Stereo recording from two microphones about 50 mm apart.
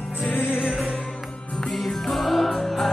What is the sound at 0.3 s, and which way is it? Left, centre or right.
Music, left.